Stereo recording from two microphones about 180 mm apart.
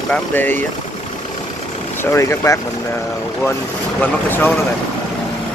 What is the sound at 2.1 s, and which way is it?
Speech, 15° left (ahead or behind).